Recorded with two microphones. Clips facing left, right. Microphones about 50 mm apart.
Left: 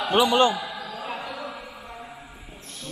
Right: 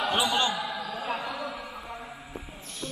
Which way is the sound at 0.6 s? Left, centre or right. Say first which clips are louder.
Even; centre.